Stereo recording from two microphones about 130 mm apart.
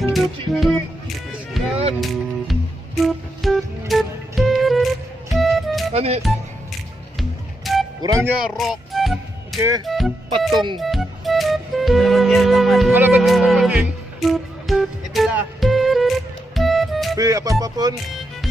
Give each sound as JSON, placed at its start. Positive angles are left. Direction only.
{"t": 0.1, "sound": "music", "side_deg": 0}
{"t": 3.0, "sound": "music", "side_deg": 0}
{"t": 5.9, "sound": "speech", "side_deg": -55}
{"t": 7.2, "sound": "music", "side_deg": 0}
{"t": 8.0, "sound": "speech", "side_deg": -25}
{"t": 8.4, "sound": "music", "side_deg": -5}
{"t": 9.8, "sound": "speech", "side_deg": 0}
{"t": 10.5, "sound": "speech", "side_deg": -35}
{"t": 10.8, "sound": "music", "side_deg": 0}
{"t": 12.9, "sound": "speech", "side_deg": -15}
{"t": 13.2, "sound": "music", "side_deg": 0}
{"t": 17.2, "sound": "speech", "side_deg": -25}